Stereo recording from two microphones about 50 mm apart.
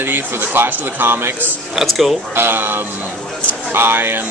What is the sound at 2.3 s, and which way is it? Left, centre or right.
A man's voice, right.